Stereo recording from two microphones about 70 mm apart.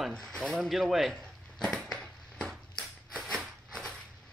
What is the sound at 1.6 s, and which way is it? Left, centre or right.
Crushing, centre.